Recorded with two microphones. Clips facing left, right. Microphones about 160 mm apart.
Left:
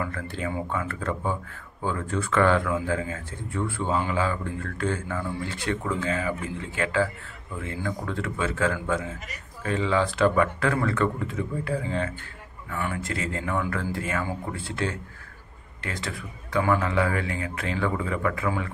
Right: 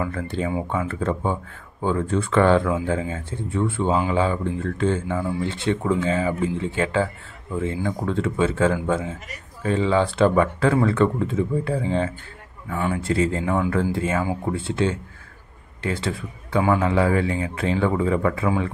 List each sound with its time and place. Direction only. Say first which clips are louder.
0.0 s speech: right 5 dB; 25° right (ahead or behind)